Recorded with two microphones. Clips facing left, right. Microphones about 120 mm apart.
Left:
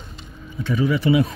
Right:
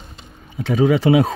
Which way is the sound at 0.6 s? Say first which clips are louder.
Right 5 dB; 85° right.